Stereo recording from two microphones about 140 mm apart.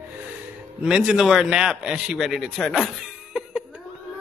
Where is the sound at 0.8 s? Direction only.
5° right (ahead or behind).